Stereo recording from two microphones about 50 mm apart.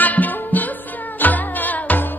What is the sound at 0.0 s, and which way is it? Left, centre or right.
Music, left.